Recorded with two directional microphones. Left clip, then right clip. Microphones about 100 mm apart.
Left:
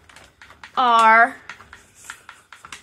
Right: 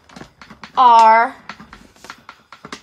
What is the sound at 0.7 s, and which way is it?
Speech, 70° left (ahead or behind).